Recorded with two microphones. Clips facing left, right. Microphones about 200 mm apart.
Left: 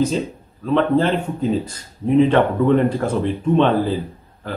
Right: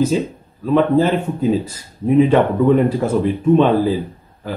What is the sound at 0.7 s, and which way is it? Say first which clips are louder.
Speech: right 3 dB; 5° right (ahead or behind).